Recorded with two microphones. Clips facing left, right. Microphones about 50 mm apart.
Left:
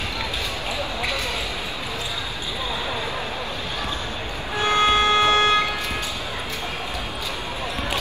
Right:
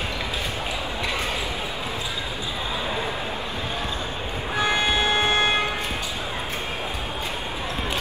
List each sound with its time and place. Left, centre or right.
4.7 s vehicle: left
5.1 s vehicle: right